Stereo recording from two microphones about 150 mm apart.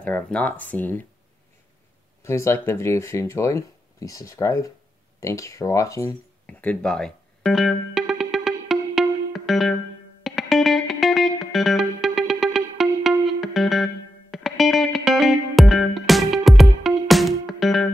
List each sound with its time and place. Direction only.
0.0 s speech: 10° left (ahead or behind)
2.2 s speech: 20° left (ahead or behind)
6.4 s music: 10° left (ahead or behind)